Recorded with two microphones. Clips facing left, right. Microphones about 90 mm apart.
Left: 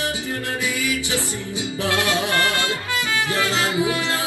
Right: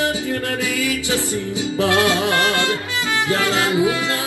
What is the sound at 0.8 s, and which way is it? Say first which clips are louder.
Music: right 3 dB; 20° left (ahead or behind).